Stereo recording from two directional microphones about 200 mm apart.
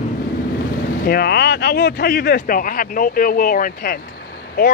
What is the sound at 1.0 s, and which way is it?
Speech, 50° left (ahead or behind).